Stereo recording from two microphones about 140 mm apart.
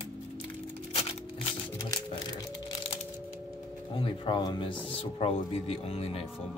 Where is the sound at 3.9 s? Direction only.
35° left (ahead or behind).